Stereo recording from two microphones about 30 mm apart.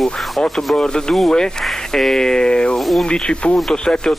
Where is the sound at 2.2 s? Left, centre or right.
Left.